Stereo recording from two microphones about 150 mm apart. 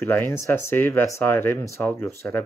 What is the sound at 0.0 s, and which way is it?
Speech, 15° left (ahead or behind).